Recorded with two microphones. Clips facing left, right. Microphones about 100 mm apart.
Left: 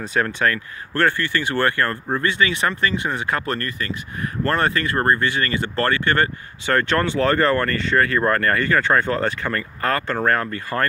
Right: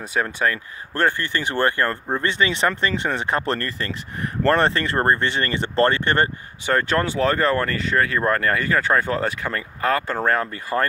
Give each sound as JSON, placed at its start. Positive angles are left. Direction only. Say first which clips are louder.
{"t": 0.0, "sound": "speech", "louder": "left 2 dB", "side_deg": -10}